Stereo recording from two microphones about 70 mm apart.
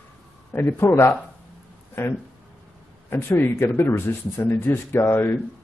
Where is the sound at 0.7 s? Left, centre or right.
Left.